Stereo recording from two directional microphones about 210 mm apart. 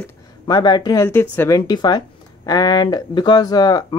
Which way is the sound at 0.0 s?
20° left (ahead or behind).